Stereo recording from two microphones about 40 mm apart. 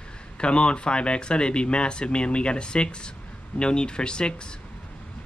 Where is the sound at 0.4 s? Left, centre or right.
Left.